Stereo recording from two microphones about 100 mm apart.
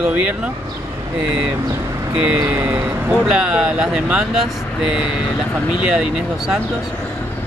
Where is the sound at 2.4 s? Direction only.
20° right (ahead or behind).